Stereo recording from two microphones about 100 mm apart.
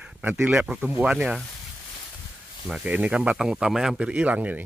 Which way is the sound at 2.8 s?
15° right (ahead or behind).